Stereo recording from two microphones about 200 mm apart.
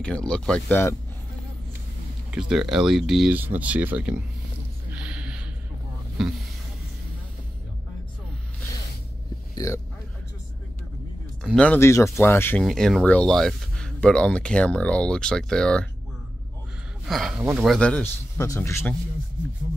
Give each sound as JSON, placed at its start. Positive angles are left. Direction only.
{"t": 0.0, "sound": "speech", "side_deg": 5}
{"t": 2.3, "sound": "speech", "side_deg": 0}
{"t": 4.9, "sound": "a sound", "side_deg": -5}
{"t": 9.6, "sound": "speech", "side_deg": 15}
{"t": 11.4, "sound": "speech", "side_deg": 5}
{"t": 17.1, "sound": "speech", "side_deg": 0}
{"t": 17.4, "sound": "speech", "side_deg": -10}
{"t": 17.6, "sound": "speech", "side_deg": 5}